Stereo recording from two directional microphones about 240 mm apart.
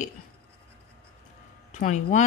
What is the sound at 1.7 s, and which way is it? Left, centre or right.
Speech, left.